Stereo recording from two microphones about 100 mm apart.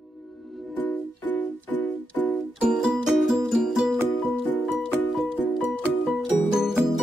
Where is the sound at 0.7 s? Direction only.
15° left (ahead or behind).